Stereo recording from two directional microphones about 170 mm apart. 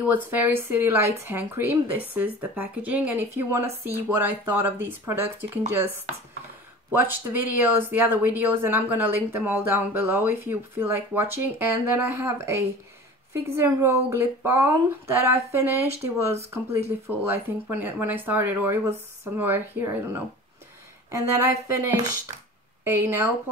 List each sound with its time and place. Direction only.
0.0 s speech: 10° right (ahead or behind)
6.9 s speech: 10° right (ahead or behind)
21.7 s speech: 15° right (ahead or behind)